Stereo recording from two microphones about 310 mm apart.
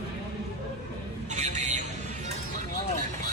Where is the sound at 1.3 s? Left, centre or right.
Right.